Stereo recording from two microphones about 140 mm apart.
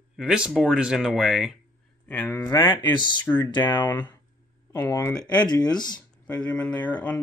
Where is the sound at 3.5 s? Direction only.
30° left (ahead or behind).